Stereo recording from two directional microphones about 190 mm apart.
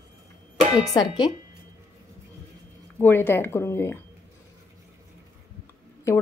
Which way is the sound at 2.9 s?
10° left (ahead or behind).